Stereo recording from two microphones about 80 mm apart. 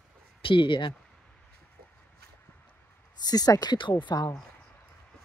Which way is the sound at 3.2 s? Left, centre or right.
Left.